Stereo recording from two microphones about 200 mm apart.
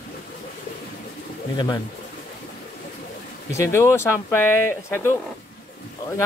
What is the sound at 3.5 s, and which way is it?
Speech, 15° left (ahead or behind).